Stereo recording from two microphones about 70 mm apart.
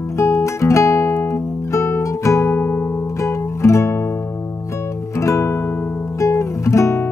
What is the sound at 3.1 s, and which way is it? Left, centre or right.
Music, left.